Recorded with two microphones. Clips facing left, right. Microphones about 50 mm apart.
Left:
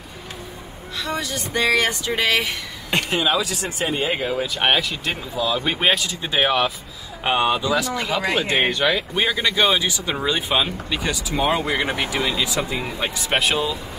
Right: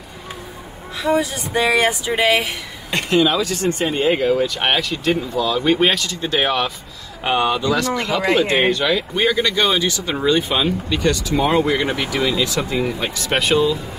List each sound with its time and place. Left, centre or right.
0.9 s speech: right
2.9 s speech: centre
7.2 s speech: centre
7.7 s speech: centre
8.5 s speech: left
9.1 s speech: centre
11.9 s speech: left
12.7 s speech: centre